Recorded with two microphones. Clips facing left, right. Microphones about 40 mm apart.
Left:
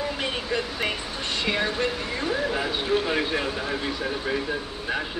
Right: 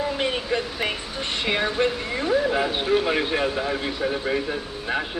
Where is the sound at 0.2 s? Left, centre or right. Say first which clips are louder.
Right 3 dB; centre.